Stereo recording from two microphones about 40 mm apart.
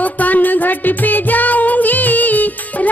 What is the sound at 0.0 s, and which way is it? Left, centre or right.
Music, left.